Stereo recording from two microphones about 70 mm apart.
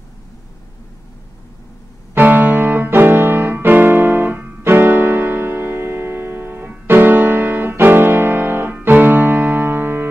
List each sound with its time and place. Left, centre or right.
2.1 s music: right